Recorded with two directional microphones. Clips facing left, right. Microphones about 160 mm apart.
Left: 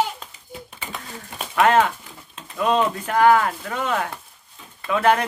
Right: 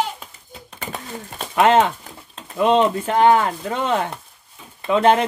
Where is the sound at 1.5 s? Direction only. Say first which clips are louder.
Right 2 dB; 20° right (ahead or behind).